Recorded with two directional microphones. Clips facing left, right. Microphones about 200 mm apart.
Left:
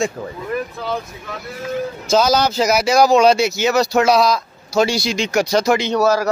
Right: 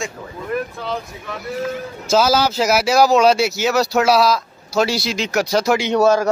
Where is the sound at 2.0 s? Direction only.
5° right (ahead or behind).